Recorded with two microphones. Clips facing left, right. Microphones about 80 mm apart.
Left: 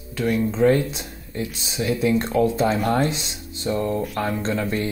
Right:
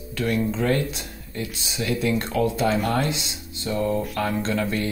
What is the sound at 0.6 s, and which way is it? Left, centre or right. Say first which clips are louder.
Speech: left 5 dB; left.